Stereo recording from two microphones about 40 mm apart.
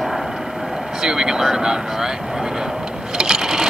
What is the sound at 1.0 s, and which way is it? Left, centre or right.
Speech, centre.